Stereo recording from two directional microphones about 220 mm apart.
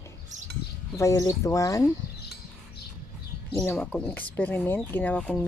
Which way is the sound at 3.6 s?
5° left (ahead or behind).